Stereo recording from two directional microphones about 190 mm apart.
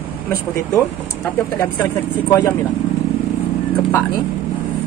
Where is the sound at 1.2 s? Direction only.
15° left (ahead or behind).